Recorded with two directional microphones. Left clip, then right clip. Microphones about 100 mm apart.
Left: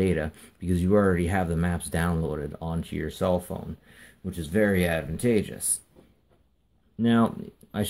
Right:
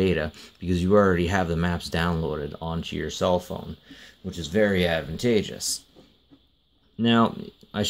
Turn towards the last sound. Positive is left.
turn(degrees=-25)  # may be behind; listen again after turning